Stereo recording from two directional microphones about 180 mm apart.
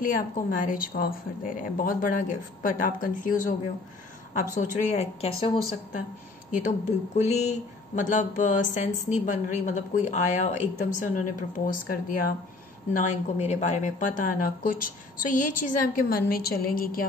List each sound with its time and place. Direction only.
0.0 s speech: 50° left (ahead or behind)
4.6 s a woman's voice: 45° left (ahead or behind)